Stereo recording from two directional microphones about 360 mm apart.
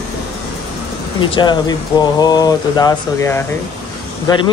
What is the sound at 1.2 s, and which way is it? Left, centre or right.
Speech, centre.